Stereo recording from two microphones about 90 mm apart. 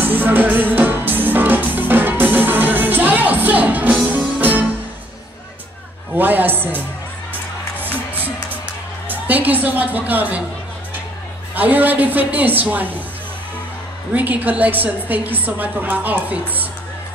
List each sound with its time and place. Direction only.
0.0 s music: 20° right (ahead or behind)
6.1 s a man's voice: 20° right (ahead or behind)
7.8 s music: 20° right (ahead or behind)
9.1 s a woman's voice: 20° right (ahead or behind)
11.5 s a woman's voice: 20° right (ahead or behind)
14.1 s a woman's voice: 20° right (ahead or behind)